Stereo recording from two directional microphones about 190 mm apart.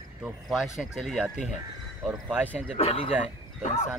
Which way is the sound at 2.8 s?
30° left (ahead or behind).